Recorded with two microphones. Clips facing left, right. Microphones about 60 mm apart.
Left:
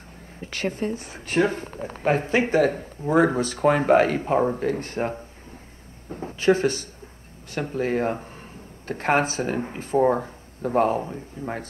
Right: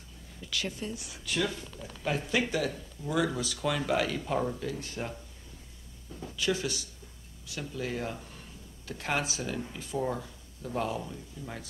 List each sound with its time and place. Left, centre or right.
0.4 s speech: left